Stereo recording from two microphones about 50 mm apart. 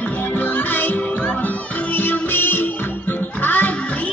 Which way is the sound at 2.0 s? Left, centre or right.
Left.